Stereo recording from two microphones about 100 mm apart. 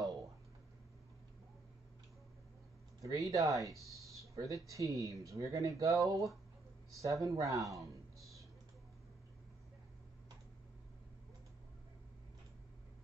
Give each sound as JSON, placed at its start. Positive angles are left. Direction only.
{"t": 3.0, "sound": "speech", "side_deg": -35}
{"t": 3.9, "sound": "a sound", "side_deg": -35}
{"t": 4.6, "sound": "speech", "side_deg": -35}